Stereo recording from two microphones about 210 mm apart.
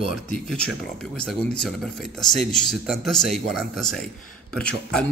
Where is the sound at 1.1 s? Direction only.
5° left (ahead or behind).